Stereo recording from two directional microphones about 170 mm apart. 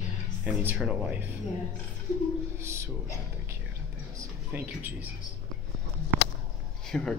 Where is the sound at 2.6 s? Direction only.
15° right (ahead or behind).